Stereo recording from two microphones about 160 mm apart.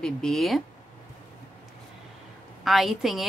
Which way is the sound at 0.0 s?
5° left (ahead or behind).